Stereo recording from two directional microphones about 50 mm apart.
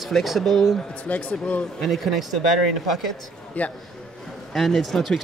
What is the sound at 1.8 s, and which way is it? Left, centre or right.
Speech, centre.